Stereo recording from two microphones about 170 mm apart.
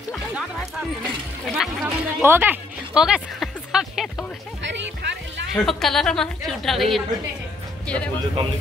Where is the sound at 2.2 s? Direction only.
10° right (ahead or behind).